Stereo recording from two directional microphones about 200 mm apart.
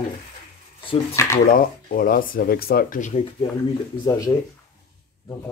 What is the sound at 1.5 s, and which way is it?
Speech, 45° left (ahead or behind).